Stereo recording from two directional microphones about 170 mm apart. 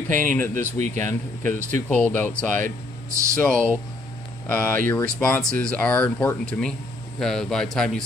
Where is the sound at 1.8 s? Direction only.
10° left (ahead or behind).